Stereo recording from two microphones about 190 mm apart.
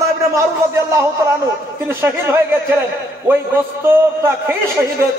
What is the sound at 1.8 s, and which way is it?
A man's voice, 10° right (ahead or behind).